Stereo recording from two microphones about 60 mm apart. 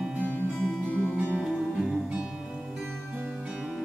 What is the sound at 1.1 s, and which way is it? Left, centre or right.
Music, right.